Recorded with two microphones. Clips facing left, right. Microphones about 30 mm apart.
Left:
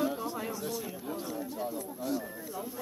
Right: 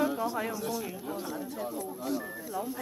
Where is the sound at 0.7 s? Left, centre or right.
Centre.